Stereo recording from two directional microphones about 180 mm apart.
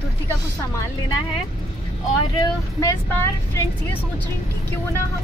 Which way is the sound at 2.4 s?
20° left (ahead or behind).